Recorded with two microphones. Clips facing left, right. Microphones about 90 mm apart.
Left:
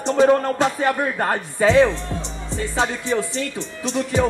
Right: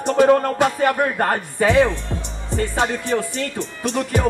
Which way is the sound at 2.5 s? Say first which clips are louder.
Right 2 dB; 55° right (ahead or behind).